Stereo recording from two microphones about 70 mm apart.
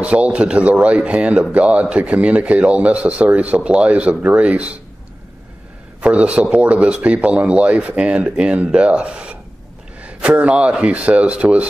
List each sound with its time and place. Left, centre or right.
0.0 s speech: centre
5.9 s a man's voice: centre